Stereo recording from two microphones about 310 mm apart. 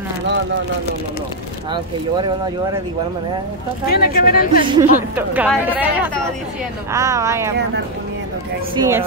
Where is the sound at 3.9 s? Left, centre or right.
Left.